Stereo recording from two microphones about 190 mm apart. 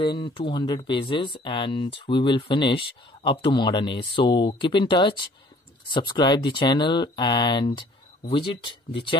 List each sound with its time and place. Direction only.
0.0 s speech: 25° left (ahead or behind)